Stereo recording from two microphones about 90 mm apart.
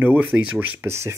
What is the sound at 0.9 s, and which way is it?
Speech, 30° right (ahead or behind).